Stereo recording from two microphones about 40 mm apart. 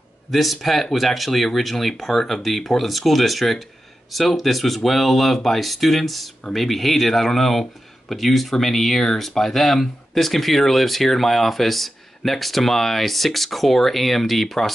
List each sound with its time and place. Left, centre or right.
0.3 s speech: centre